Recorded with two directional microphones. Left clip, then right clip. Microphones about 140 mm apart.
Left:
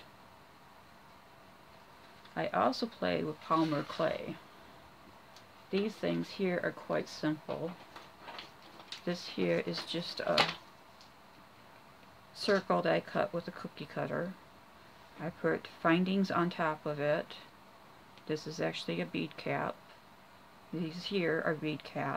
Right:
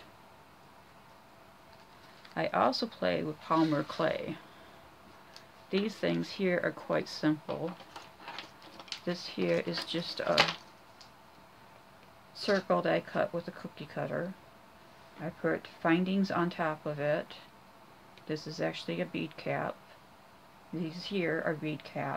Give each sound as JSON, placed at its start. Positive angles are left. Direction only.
{"t": 2.3, "sound": "speech", "side_deg": 0}
{"t": 5.7, "sound": "speech", "side_deg": -5}
{"t": 9.0, "sound": "speech", "side_deg": 10}
{"t": 12.4, "sound": "speech", "side_deg": 10}
{"t": 20.8, "sound": "speech", "side_deg": 20}